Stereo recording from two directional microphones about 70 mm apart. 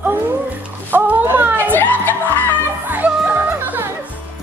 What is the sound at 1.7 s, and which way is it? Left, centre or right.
Music, left.